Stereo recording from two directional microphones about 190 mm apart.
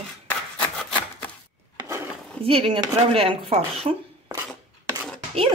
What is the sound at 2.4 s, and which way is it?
Speech, 30° right (ahead or behind).